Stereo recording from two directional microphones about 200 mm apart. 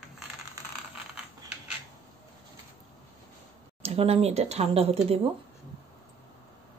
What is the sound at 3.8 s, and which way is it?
Speech, 30° right (ahead or behind).